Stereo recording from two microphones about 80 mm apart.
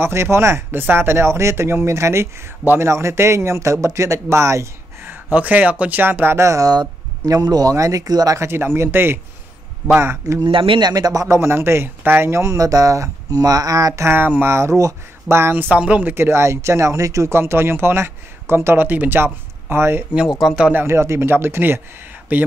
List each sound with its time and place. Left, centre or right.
0.0 s speech: right
5.0 s speech: right
6.7 s speech: right
8.4 s speech: right
10.4 s speech: right
10.9 s speech: right
14.0 s speech: right
15.7 s speech: centre
20.2 s speech: centre
20.7 s speech: right